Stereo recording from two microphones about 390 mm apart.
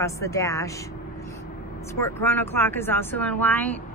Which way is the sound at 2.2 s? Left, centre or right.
Centre.